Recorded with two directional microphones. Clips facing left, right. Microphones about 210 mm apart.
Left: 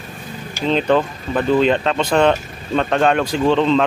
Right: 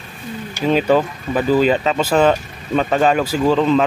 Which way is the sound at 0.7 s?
5° right (ahead or behind).